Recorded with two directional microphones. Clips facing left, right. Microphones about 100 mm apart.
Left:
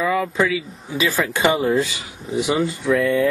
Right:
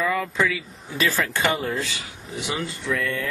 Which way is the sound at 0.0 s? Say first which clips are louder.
Left 4 dB; 10° left (ahead or behind).